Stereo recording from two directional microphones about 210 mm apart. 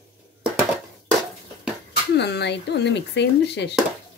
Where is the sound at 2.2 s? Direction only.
55° left (ahead or behind).